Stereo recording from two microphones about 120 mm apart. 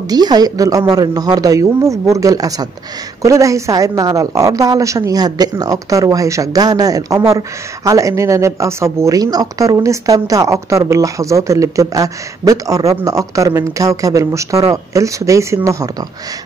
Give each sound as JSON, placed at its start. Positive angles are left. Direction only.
{"t": 0.1, "sound": "a woman's voice", "side_deg": -35}